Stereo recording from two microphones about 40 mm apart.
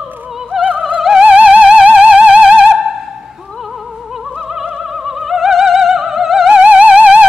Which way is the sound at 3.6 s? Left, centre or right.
Centre.